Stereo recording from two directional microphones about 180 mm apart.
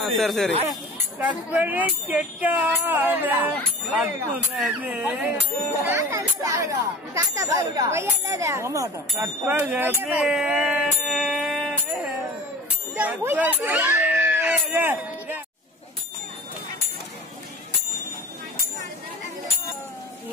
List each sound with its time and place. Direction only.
0.2 s speech: centre (ahead or behind)
4.6 s speech: 10° right (ahead or behind)
13.7 s a sound: 10° right (ahead or behind)